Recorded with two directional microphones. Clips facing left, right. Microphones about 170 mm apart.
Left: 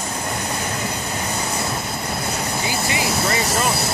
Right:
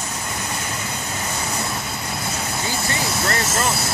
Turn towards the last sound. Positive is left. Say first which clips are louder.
# left 2 dB
turn(degrees=10)  # may be behind; listen again after turning